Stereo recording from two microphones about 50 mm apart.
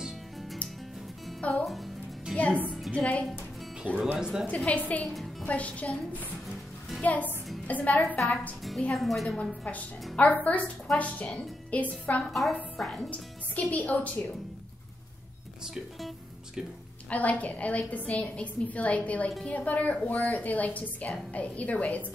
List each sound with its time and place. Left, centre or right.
0.0 s music: centre
1.4 s a woman's voice: left
4.2 s a woman's voice: centre
4.5 s a woman's voice: left
8.9 s a woman's voice: centre
9.7 s a woman's voice: left
12.3 s a woman's voice: centre
13.1 s a woman's voice: left
17.1 s a woman's voice: left